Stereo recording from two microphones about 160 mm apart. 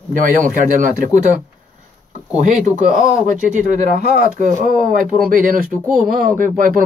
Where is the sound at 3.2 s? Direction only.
55° right (ahead or behind).